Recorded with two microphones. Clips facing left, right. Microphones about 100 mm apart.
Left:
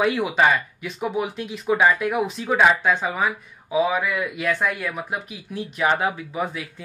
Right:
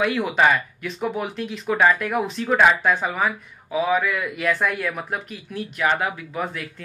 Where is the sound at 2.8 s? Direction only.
Centre (ahead or behind).